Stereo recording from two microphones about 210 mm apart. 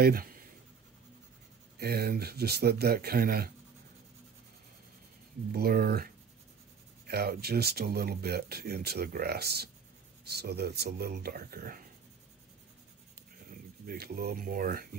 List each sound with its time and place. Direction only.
0.0 s writing: 45° right (ahead or behind)
1.8 s speech: 50° right (ahead or behind)
5.5 s speech: 45° right (ahead or behind)
13.5 s speech: 45° right (ahead or behind)